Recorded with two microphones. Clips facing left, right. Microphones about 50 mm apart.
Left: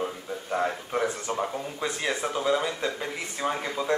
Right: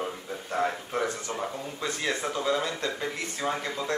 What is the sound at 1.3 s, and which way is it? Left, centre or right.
Speech, centre.